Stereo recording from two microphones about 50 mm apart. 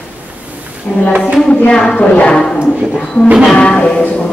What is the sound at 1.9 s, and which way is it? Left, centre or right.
Speech, left.